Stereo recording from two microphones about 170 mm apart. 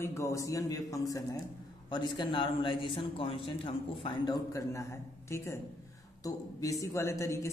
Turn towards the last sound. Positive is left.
turn(degrees=15)  # may be behind; listen again after turning